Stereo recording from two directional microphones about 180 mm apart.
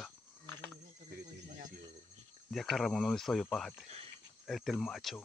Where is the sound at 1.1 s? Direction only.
50° right (ahead or behind).